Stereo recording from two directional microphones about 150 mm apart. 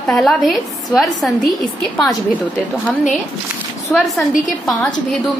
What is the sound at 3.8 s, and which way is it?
A woman's voice, centre (ahead or behind).